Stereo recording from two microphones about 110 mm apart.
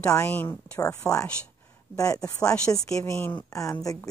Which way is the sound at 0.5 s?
30° left (ahead or behind).